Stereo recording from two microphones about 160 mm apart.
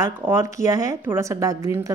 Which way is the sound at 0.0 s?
15° right (ahead or behind).